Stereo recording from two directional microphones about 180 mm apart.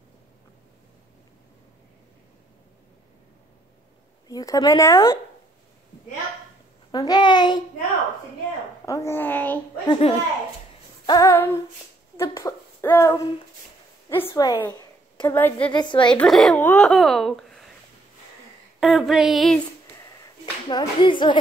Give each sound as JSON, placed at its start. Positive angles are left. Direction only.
{"t": 4.3, "sound": "speech", "side_deg": 20}
{"t": 6.9, "sound": "speech", "side_deg": 20}
{"t": 8.8, "sound": "a child's voice", "side_deg": 15}
{"t": 9.8, "sound": "a child's voice", "side_deg": 35}
{"t": 11.1, "sound": "a child's voice", "side_deg": 20}
{"t": 12.2, "sound": "a sound", "side_deg": 15}
{"t": 14.0, "sound": "a woman's voice", "side_deg": 15}
{"t": 15.3, "sound": "a child's voice", "side_deg": 10}
{"t": 15.7, "sound": "speech", "side_deg": 25}
{"t": 16.2, "sound": "speech", "side_deg": 0}
{"t": 18.8, "sound": "speech", "side_deg": 0}
{"t": 20.6, "sound": "speech", "side_deg": 25}